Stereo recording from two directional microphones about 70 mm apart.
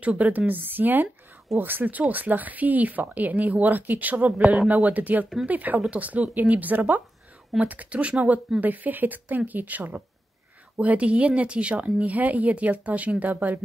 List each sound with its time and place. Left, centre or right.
0.0 s speech: right